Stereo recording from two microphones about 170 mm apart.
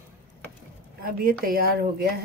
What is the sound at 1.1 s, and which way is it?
A woman's voice, 60° right (ahead or behind).